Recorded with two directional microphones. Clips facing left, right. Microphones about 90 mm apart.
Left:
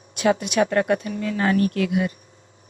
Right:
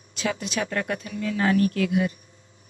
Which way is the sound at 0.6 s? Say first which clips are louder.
Left 8 dB; 45° left (ahead or behind).